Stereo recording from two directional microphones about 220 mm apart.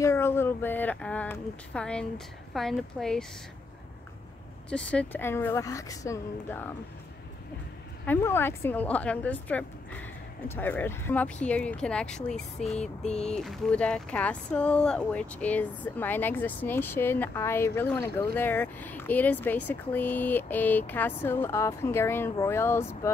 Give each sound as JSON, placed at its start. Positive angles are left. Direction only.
{"t": 0.0, "sound": "speech", "side_deg": 10}
{"t": 4.9, "sound": "speech", "side_deg": 10}
{"t": 8.0, "sound": "speech", "side_deg": 10}
{"t": 13.0, "sound": "a sound", "side_deg": 30}
{"t": 13.3, "sound": "speech", "side_deg": 0}